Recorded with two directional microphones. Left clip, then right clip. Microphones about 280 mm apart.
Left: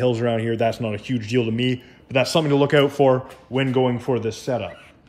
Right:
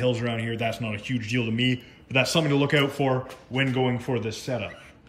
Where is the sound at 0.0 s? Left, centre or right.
Centre.